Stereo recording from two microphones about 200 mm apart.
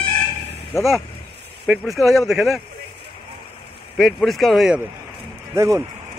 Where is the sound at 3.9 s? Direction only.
Centre (ahead or behind).